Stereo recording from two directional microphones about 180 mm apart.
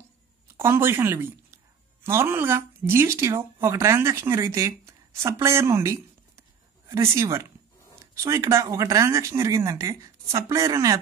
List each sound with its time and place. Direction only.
0.6 s speech: 15° right (ahead or behind)